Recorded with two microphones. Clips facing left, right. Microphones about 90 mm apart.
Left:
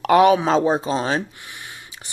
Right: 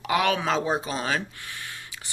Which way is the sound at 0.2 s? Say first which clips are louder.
Left 9 dB; 25° left (ahead or behind).